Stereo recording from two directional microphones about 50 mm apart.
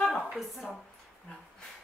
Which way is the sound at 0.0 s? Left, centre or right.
Centre.